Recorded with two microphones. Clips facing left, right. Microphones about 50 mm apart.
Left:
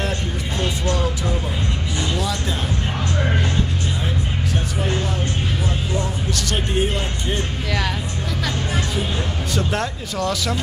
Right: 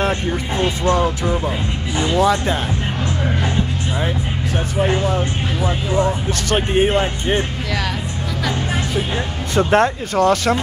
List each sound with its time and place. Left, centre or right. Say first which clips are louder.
0.6 s speech: right 5 dB; right
2.0 s music: right 10 dB; right
4.7 s speech: right 9 dB; right
6.5 s speech: right 8 dB; right
9.6 s speech: right 11 dB; right